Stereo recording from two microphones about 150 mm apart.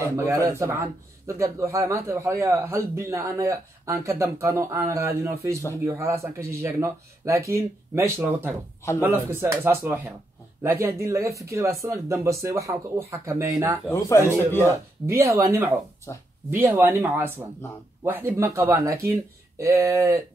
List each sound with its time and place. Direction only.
0.0 s speech: 20° right (ahead or behind)
13.9 s a man's voice: 20° left (ahead or behind)
15.0 s speech: 20° right (ahead or behind)
16.1 s a man's voice: 20° left (ahead or behind)
16.4 s speech: 15° right (ahead or behind)